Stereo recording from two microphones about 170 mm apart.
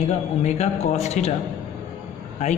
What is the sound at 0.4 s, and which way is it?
Speech, 40° left (ahead or behind).